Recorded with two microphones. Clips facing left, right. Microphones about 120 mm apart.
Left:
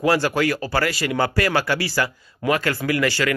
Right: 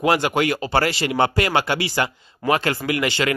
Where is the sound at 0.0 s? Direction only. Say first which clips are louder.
Even; 20° right (ahead or behind).